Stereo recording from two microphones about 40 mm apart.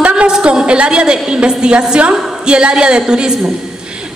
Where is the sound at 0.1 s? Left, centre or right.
Right.